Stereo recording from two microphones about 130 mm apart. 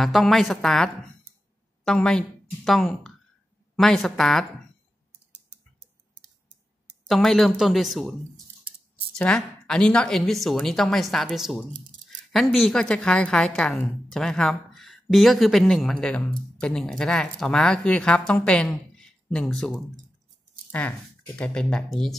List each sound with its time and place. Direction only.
0.0 s a woman's voice: centre (ahead or behind)
7.1 s speech: centre (ahead or behind)
9.1 s speech: 5° left (ahead or behind)